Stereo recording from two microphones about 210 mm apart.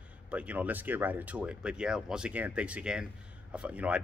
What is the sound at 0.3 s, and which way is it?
Speech, 5° right (ahead or behind).